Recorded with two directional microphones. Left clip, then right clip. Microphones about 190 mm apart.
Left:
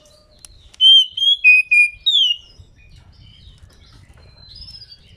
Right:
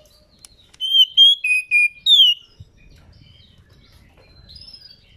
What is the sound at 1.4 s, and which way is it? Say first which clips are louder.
Whistle: left 6 dB; 40° right (ahead or behind).